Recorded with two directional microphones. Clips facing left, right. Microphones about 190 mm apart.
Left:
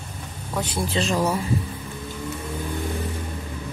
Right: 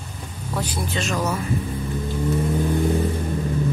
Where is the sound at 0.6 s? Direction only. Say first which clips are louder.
Left 3 dB; 30° left (ahead or behind).